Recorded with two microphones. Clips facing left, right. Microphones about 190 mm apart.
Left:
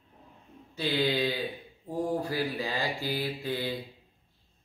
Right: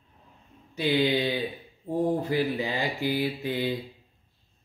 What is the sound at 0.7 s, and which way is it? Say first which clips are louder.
Speech: right 4 dB; 20° right (ahead or behind).